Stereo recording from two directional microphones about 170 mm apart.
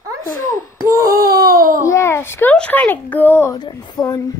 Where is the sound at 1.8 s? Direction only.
15° left (ahead or behind).